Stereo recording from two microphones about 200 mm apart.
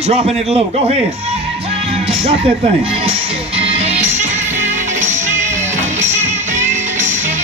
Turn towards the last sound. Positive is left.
turn(degrees=-35)  # may be behind; listen again after turning